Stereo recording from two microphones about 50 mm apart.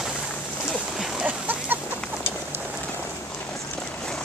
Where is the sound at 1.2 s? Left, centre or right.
Right.